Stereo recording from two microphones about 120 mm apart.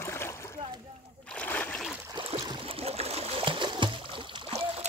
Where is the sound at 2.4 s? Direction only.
45° right (ahead or behind).